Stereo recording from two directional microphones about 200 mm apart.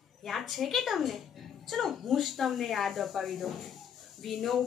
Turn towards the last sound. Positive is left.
turn(degrees=0)  # may be behind; listen again after turning